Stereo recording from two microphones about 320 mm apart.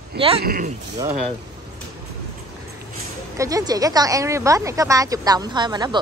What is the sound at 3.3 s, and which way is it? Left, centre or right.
Speech, centre.